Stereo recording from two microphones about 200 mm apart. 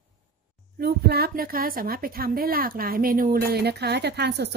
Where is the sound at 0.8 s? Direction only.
50° right (ahead or behind).